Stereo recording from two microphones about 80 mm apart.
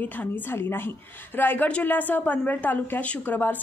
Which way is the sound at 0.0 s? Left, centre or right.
Left.